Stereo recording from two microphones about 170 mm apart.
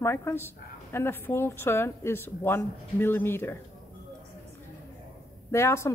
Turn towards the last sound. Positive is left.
turn(degrees=15)  # may be behind; listen again after turning